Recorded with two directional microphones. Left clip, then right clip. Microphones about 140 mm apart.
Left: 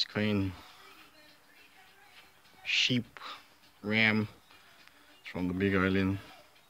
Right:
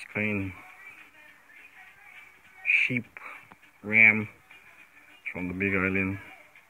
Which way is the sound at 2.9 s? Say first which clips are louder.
Right 2 dB; 20° left (ahead or behind).